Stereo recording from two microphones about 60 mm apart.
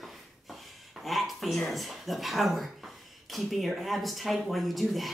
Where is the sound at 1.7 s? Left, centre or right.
Centre.